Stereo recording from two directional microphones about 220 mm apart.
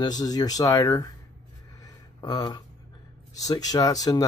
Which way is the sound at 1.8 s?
20° left (ahead or behind).